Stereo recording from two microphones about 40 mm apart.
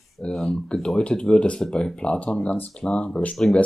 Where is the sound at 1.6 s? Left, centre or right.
Centre.